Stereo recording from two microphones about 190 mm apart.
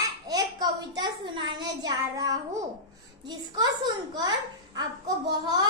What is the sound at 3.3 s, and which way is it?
A child's voice, 20° right (ahead or behind).